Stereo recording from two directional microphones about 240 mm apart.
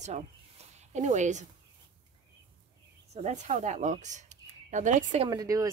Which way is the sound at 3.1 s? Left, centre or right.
Right.